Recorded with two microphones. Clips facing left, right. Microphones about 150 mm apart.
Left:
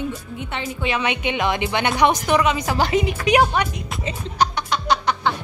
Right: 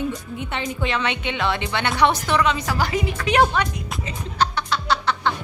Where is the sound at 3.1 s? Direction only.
10° left (ahead or behind).